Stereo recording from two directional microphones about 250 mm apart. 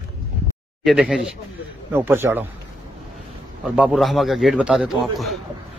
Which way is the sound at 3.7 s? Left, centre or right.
Centre.